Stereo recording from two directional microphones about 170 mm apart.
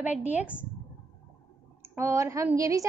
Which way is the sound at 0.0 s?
10° right (ahead or behind).